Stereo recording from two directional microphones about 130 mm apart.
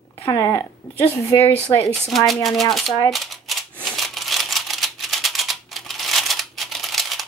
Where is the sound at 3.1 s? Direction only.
Centre (ahead or behind).